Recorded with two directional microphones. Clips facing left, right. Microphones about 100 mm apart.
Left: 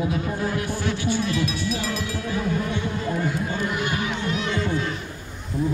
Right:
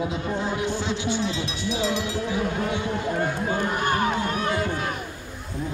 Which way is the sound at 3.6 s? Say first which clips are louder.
Right 3 dB; 45° right (ahead or behind).